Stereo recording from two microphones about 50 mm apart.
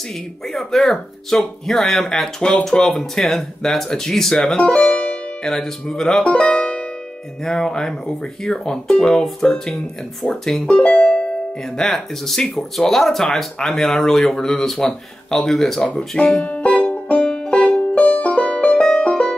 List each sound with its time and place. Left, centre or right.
0.5 s speech: centre
4.6 s music: left
5.4 s speech: centre
10.2 s speech: left
10.7 s music: left
11.8 s speech: centre
16.3 s music: left